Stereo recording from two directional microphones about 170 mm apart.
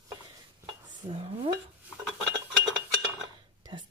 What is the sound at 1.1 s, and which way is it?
Dishes, 35° right (ahead or behind).